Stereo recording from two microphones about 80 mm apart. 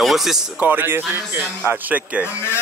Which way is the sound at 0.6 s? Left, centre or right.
Right.